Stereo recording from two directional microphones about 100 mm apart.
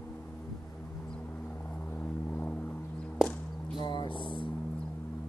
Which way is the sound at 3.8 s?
55° left (ahead or behind).